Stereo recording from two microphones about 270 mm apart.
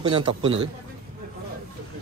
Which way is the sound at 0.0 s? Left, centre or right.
Centre.